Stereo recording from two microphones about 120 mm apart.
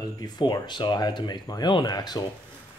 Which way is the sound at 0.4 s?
40° left (ahead or behind).